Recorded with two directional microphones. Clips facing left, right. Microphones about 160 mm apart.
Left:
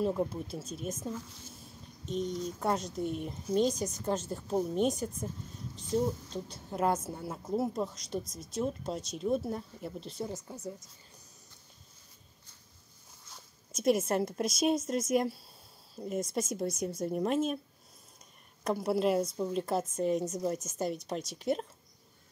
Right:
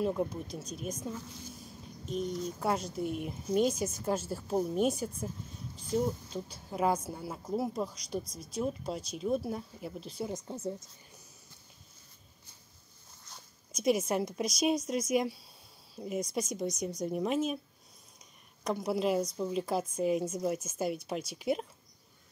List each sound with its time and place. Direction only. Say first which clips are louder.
0.0 s a woman's voice: left 1 dB; centre (ahead or behind)
10.3 s speech: right 4 dB; 20° right (ahead or behind)
13.3 s a woman's voice: even; centre (ahead or behind)
18.6 s a woman's voice: left 2 dB; 5° left (ahead or behind)